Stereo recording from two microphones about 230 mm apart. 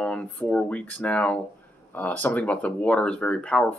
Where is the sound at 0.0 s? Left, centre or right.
Centre.